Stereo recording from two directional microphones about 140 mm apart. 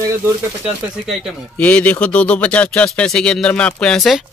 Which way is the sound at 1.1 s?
10° left (ahead or behind).